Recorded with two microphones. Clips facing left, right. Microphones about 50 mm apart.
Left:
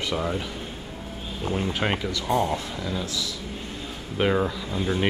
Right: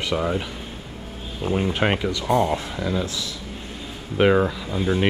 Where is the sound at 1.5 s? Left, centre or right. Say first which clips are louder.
Right 4 dB; centre.